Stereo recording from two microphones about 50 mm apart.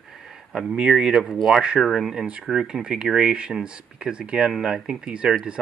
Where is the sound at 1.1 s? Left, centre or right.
Centre.